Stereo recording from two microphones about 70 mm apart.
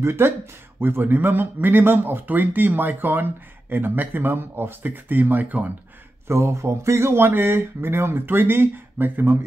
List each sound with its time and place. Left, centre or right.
0.0 s speech: right
6.2 s speech: right